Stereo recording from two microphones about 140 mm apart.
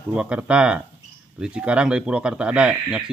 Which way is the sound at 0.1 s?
10° right (ahead or behind).